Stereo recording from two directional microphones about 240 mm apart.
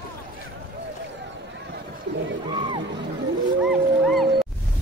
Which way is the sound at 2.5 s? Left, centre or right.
Centre.